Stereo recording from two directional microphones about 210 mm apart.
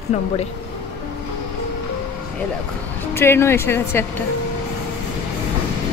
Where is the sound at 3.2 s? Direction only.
10° left (ahead or behind).